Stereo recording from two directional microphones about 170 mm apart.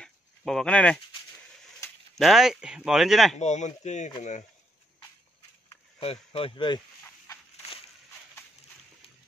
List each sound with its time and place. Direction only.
0.0 s a sound: 5° left (ahead or behind)
2.1 s speech: centre (ahead or behind)
3.3 s speech: 45° left (ahead or behind)
5.9 s speech: 35° left (ahead or behind)